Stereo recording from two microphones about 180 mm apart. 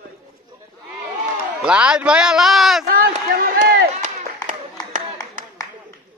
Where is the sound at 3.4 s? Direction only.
50° right (ahead or behind).